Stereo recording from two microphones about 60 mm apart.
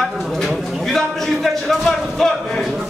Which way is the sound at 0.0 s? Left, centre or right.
Centre.